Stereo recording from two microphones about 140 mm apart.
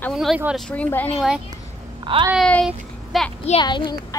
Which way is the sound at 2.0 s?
35° right (ahead or behind).